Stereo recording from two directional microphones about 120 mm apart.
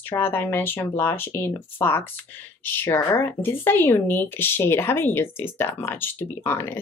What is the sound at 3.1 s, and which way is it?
Speech, 20° left (ahead or behind).